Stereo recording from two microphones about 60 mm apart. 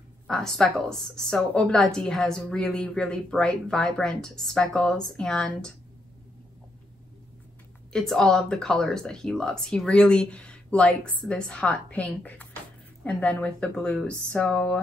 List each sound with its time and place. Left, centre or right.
0.3 s speech: centre
7.9 s a woman's voice: centre